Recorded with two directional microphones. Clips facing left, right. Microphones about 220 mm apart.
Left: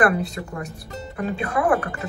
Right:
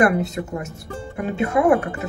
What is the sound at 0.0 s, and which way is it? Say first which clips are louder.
Speech: right 2 dB; 25° right (ahead or behind).